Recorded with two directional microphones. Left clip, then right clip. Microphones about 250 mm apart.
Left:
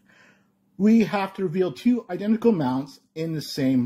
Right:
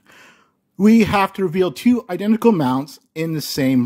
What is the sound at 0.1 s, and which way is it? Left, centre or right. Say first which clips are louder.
Speech: right 9 dB; right.